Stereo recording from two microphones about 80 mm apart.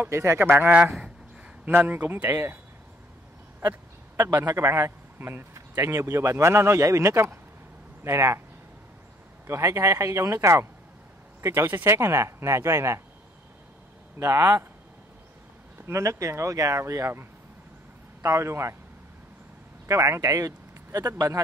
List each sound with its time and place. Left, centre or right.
0.1 s speech: right
0.5 s a man's voice: centre
4.6 s speech: right
9.5 s speech: right
14.2 s speech: right
15.8 s speech: right
19.9 s speech: right